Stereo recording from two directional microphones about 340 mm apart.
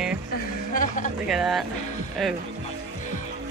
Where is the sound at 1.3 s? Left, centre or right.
Centre.